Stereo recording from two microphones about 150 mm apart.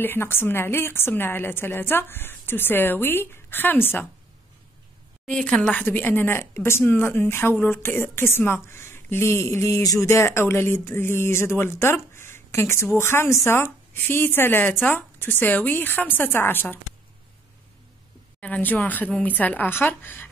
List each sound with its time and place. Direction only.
0.0 s speech: 15° left (ahead or behind)
5.3 s speech: 5° left (ahead or behind)
18.4 s speech: 10° left (ahead or behind)